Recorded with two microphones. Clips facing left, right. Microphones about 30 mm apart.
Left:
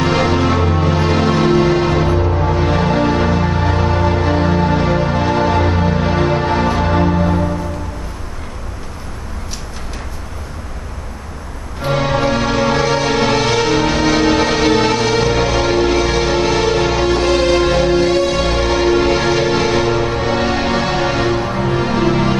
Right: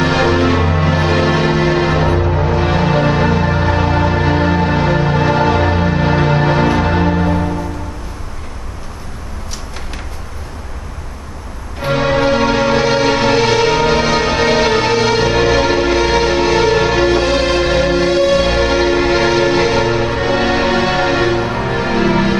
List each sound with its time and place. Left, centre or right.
0.0 s music: centre
11.8 s music: centre